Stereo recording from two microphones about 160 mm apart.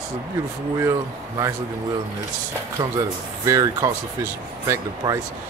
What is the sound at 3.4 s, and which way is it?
Speech, 20° right (ahead or behind).